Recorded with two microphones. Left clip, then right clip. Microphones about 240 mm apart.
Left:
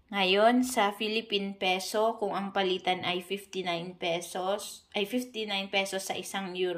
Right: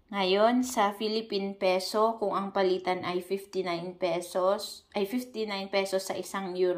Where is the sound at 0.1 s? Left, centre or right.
Centre.